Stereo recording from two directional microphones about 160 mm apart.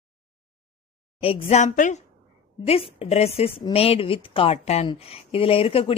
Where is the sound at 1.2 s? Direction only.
40° left (ahead or behind).